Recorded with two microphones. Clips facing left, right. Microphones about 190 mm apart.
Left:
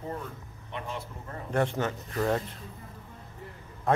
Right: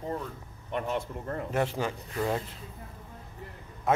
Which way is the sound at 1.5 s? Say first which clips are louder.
Left 3 dB; 10° right (ahead or behind).